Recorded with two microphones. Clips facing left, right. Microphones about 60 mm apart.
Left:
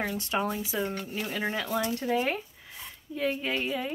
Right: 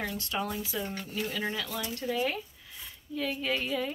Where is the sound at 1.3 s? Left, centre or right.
Left.